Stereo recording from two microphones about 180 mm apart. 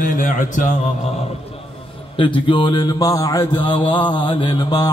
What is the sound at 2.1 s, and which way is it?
A man's voice, 25° left (ahead or behind).